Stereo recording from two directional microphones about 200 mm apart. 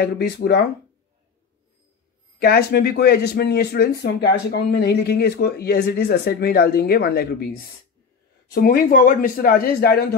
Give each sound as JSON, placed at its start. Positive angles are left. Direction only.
{"t": 0.0, "sound": "speech", "side_deg": 55}
{"t": 2.4, "sound": "speech", "side_deg": 50}
{"t": 8.5, "sound": "speech", "side_deg": 45}